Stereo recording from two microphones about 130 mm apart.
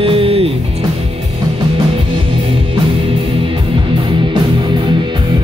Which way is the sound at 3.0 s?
40° right (ahead or behind).